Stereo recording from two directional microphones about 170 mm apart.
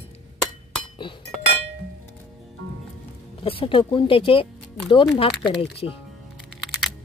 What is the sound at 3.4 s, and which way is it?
Speech, 30° left (ahead or behind).